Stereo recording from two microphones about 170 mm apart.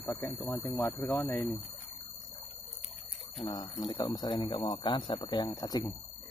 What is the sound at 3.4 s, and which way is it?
Speech, 25° left (ahead or behind).